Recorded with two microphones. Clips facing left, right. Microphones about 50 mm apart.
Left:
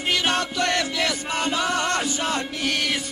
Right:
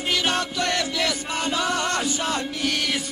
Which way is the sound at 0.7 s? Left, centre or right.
Centre.